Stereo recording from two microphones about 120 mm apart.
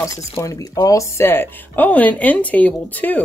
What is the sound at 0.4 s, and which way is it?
Speech, 30° left (ahead or behind).